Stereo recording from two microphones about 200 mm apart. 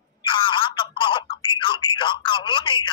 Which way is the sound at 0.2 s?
25° left (ahead or behind).